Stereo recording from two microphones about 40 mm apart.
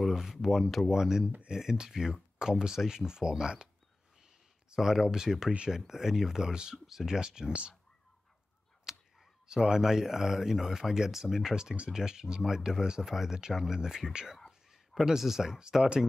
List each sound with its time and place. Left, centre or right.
0.1 s speech: centre
4.7 s speech: centre
8.9 s a sound: centre
9.5 s speech: centre